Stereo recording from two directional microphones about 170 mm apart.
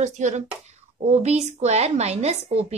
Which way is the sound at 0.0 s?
45° right (ahead or behind).